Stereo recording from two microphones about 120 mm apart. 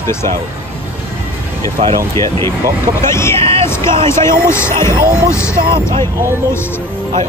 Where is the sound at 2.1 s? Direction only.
25° left (ahead or behind).